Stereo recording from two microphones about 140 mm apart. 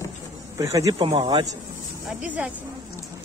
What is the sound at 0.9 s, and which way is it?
Speech, 40° right (ahead or behind).